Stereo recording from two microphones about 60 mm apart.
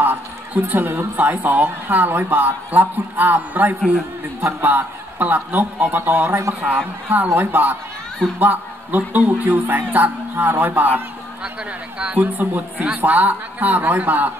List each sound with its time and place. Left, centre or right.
0.0 s a woman's voice: right
12.2 s a woman's voice: right